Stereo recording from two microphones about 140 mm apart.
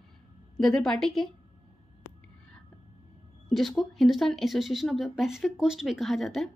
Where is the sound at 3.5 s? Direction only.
Centre (ahead or behind).